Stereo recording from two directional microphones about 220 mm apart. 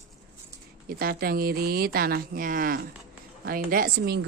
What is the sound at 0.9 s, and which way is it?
A woman's voice, 45° right (ahead or behind).